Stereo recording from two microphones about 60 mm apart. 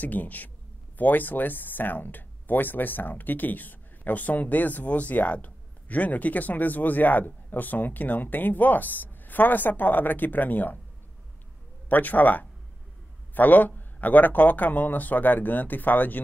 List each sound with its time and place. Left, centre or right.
0.0 s speech: left
11.9 s speech: left